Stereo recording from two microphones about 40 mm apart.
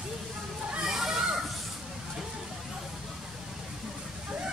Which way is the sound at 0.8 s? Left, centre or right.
Centre.